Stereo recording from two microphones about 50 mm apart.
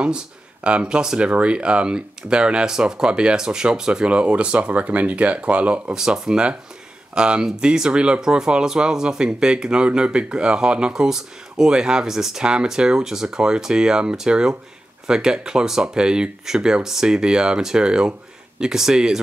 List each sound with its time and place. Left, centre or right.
0.7 s speech: right
5.9 s speech: centre